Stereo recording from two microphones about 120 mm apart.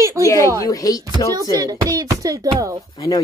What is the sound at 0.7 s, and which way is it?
Speech, 30° left (ahead or behind).